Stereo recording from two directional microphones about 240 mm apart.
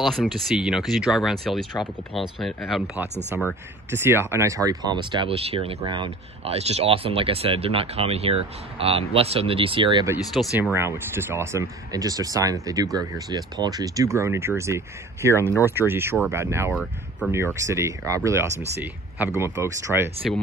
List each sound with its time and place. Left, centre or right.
0.0 s speech: centre
10.1 s speech: centre